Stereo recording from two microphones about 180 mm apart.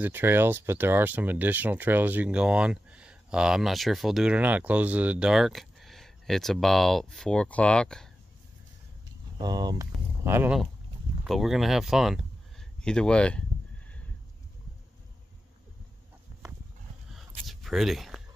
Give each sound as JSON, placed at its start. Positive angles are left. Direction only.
{"t": 0.0, "sound": "speech", "side_deg": -10}
{"t": 9.4, "sound": "speech", "side_deg": -20}
{"t": 11.2, "sound": "speech", "side_deg": 0}
{"t": 17.5, "sound": "a sound", "side_deg": 0}